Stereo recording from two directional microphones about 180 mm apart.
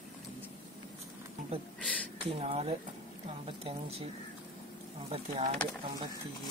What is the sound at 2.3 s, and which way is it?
Speech, 35° right (ahead or behind).